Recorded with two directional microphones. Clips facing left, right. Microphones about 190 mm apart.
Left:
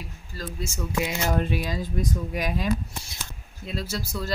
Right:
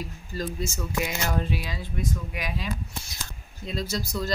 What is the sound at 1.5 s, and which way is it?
Speech, 45° left (ahead or behind).